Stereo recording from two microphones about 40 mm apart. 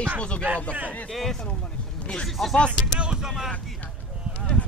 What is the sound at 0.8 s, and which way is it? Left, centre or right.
Speech, left.